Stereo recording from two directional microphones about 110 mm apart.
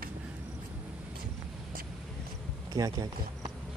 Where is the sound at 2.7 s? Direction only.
35° right (ahead or behind).